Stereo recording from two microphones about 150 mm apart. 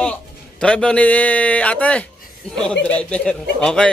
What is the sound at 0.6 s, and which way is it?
Speech, 5° left (ahead or behind).